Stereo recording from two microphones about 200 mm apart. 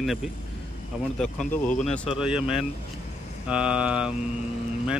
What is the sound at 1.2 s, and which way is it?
Speech, 5° left (ahead or behind).